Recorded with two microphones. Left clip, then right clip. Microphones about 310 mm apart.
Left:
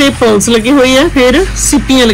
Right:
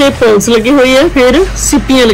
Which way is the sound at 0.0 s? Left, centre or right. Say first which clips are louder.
Right 1 dB; centre.